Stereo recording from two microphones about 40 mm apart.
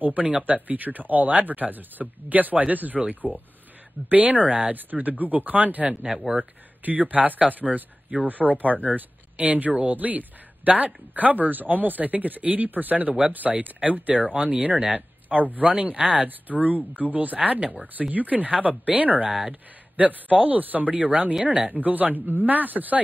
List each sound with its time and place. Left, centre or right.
0.0 s speech: right
17.4 s speech: right
21.7 s speech: right